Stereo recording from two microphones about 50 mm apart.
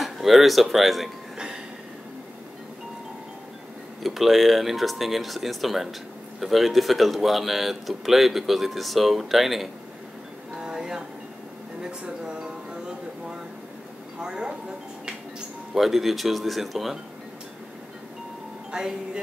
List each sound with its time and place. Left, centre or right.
0.0 s speech: centre
4.0 s speech: centre
10.5 s a sound: centre
14.2 s speech: centre
15.7 s speech: centre
18.7 s speech: centre